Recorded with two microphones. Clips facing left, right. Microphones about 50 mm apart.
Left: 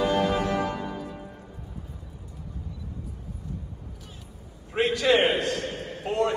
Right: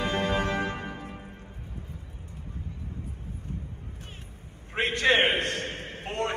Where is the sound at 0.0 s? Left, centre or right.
Right.